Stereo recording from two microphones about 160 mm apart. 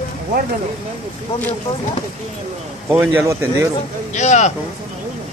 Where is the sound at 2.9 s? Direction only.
15° right (ahead or behind).